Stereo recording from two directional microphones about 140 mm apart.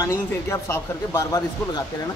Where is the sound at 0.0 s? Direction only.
20° left (ahead or behind).